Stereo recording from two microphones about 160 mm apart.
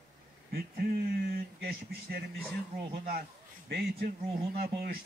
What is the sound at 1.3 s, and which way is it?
Speech, 75° right (ahead or behind).